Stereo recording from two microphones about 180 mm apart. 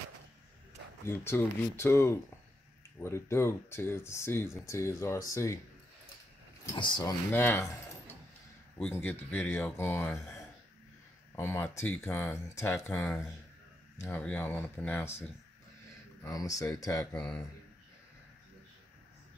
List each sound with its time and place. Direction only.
1.0 s speech: 15° left (ahead or behind)
6.6 s speech: 20° left (ahead or behind)
7.3 s speech: 10° left (ahead or behind)
11.3 s speech: 10° left (ahead or behind)
16.3 s speech: 20° left (ahead or behind)
17.1 s speech: 5° left (ahead or behind)